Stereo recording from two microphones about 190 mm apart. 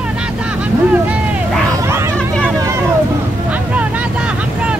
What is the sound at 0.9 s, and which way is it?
Vehicle, 5° right (ahead or behind).